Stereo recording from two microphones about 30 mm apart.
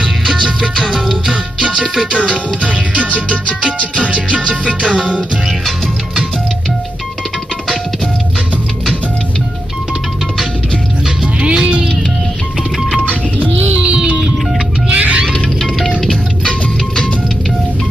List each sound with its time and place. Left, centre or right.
0.8 s music: centre
1.3 s music: right
2.6 s music: right
11.4 s music: right
13.0 s music: right
13.7 s music: right
14.9 s music: right
16.4 s music: left